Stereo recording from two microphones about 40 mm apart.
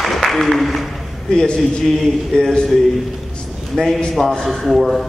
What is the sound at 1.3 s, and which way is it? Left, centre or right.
Speech, centre.